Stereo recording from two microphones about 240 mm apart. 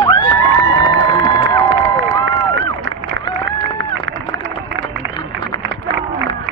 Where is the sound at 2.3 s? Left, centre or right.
Right.